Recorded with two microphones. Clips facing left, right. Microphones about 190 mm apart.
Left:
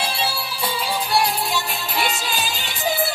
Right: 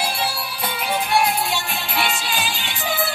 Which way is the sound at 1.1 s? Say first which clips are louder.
Right 1 dB; 40° left (ahead or behind).